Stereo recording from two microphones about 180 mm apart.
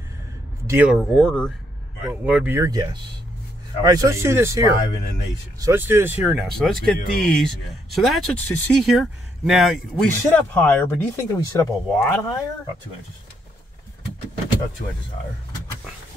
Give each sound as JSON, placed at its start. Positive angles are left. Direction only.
{"t": 0.7, "sound": "speech", "side_deg": -10}
{"t": 1.1, "sound": "speech", "side_deg": 5}